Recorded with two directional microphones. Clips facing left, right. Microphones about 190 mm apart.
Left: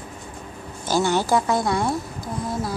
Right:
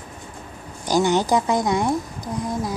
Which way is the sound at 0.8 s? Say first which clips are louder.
Right 2 dB; 15° right (ahead or behind).